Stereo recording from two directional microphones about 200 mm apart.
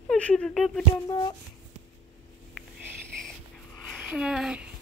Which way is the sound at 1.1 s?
20° left (ahead or behind).